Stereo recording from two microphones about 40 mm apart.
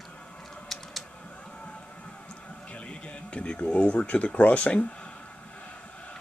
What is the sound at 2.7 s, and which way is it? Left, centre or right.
Speech, left.